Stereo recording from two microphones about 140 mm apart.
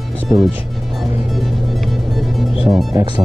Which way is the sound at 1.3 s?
Centre (ahead or behind).